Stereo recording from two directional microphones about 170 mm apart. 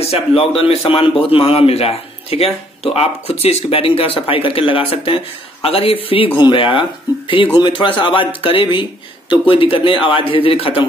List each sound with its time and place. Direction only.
0.1 s speech: 35° left (ahead or behind)